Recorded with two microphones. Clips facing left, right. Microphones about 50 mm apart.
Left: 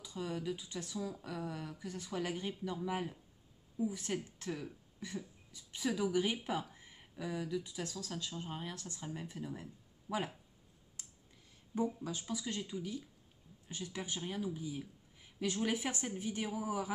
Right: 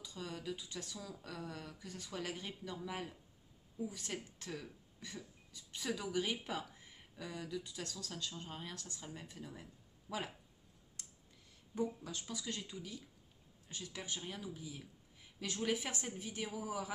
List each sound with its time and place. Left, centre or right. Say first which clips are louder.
0.0 s speech: left 5 dB; centre
11.7 s speech: left 3 dB; centre